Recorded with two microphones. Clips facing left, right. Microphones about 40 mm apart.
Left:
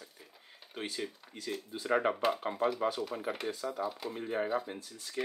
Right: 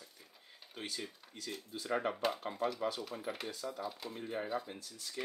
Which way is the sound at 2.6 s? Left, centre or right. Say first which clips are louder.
Left 5 dB; centre.